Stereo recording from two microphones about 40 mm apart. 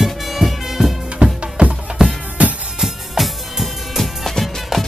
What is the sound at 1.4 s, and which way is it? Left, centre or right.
Music, right.